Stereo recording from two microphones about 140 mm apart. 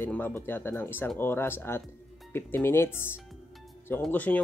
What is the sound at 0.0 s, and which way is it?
Speech, 15° left (ahead or behind).